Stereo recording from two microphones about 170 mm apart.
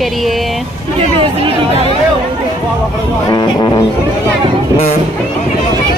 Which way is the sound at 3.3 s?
25° left (ahead or behind).